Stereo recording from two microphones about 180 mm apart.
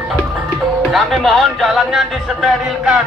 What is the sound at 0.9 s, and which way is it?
Speech, centre (ahead or behind).